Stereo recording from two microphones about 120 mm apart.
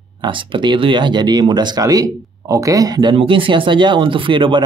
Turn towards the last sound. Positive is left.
turn(degrees=-45)  # may be behind; listen again after turning